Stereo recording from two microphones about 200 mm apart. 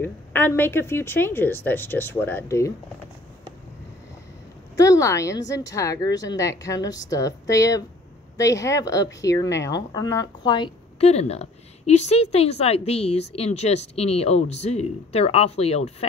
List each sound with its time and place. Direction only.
0.0 s a woman's voice: 10° left (ahead or behind)
4.7 s a woman's voice: 15° left (ahead or behind); by 16.1 s 30° left (ahead or behind)